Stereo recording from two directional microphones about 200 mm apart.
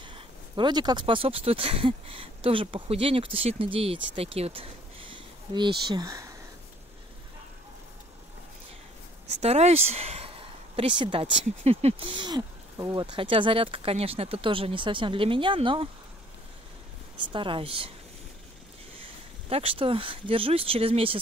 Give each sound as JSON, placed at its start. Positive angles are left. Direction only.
{"t": 0.0, "sound": "speech", "side_deg": -25}
{"t": 9.3, "sound": "speech", "side_deg": -35}
{"t": 17.3, "sound": "speech", "side_deg": -25}
{"t": 19.5, "sound": "speech", "side_deg": -30}